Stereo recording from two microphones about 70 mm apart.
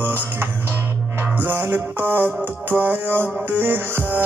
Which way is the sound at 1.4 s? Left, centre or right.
Right.